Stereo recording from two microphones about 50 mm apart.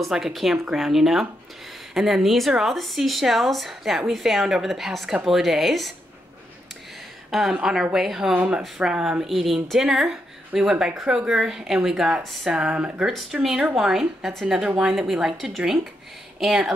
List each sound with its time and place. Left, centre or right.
0.1 s a woman's voice: centre
7.2 s a woman's voice: centre
13.3 s a woman's voice: centre